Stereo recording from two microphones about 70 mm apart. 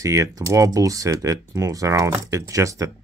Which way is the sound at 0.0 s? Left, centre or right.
Right.